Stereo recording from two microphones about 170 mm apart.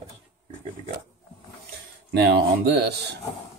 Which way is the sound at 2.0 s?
70° right (ahead or behind).